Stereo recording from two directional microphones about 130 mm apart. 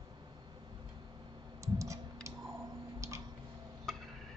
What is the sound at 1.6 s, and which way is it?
Clicking, 25° right (ahead or behind).